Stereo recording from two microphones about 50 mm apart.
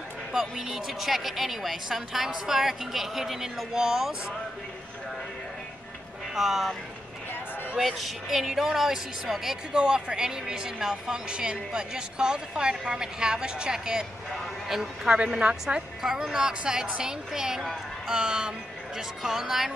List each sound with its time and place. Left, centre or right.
0.3 s speech: centre
6.3 s speech: centre
7.8 s speech: centre
15.0 s a woman's voice: centre